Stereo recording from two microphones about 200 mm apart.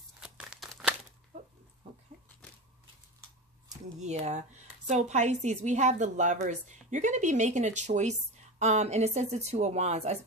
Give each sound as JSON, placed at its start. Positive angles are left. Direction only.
{"t": 0.2, "sound": "tearing", "side_deg": -5}
{"t": 3.6, "sound": "speech", "side_deg": -35}